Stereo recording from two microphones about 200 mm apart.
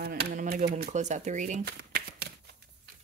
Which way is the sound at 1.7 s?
55° right (ahead or behind).